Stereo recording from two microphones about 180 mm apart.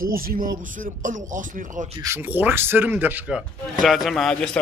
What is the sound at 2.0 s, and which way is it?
Speech, 15° right (ahead or behind).